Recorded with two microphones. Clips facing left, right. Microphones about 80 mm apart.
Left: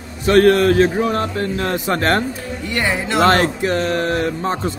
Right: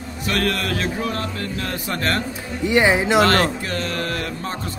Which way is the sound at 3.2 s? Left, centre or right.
Left.